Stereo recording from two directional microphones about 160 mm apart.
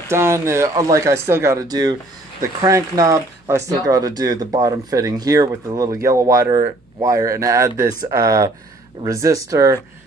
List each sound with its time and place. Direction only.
0.1 s speech: 15° right (ahead or behind)